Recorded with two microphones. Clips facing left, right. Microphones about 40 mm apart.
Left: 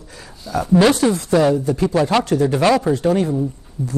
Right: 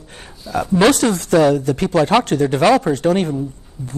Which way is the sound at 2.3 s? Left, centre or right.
Right.